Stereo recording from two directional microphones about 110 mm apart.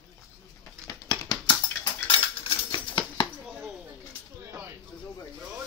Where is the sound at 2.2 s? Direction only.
55° left (ahead or behind).